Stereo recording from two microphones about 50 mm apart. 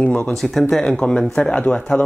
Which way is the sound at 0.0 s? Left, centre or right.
Left.